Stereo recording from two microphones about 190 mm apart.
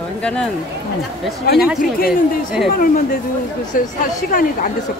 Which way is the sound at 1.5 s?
Centre (ahead or behind).